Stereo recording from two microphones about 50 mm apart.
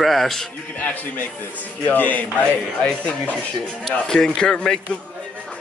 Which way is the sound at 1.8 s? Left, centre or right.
Left.